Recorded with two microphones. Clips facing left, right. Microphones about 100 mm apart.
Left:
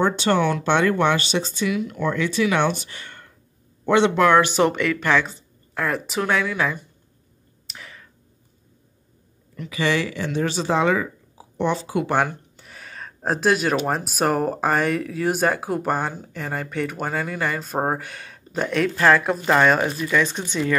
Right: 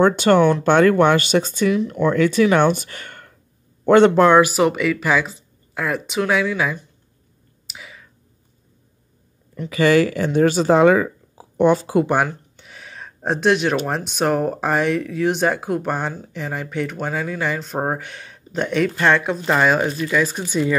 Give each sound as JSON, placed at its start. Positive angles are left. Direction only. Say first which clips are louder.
{"t": 0.0, "sound": "speech", "louder": "right 6 dB", "side_deg": -50}
{"t": 4.4, "sound": "speech", "louder": "right 3 dB", "side_deg": -5}
{"t": 7.6, "sound": "whispering", "louder": "right 1 dB", "side_deg": -5}
{"t": 9.7, "sound": "speech", "louder": "right 7 dB", "side_deg": -45}
{"t": 12.3, "sound": "speech", "louder": "right 2 dB", "side_deg": 0}